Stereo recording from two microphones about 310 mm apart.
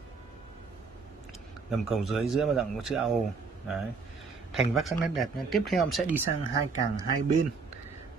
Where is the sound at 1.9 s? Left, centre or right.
Centre.